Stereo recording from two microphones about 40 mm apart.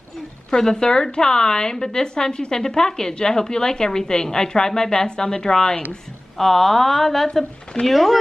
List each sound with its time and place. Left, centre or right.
0.5 s a woman's voice: centre